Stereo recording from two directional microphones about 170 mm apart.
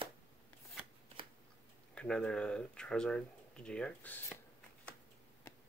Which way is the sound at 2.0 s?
5° left (ahead or behind).